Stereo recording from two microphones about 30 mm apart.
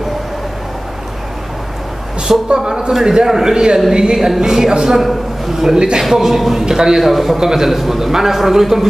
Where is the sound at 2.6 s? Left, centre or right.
Centre.